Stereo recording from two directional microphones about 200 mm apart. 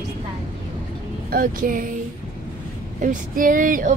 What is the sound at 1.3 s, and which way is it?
Speech, 45° right (ahead or behind).